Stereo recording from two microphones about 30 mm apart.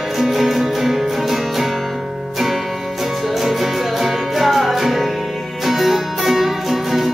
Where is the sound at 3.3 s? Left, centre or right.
Centre.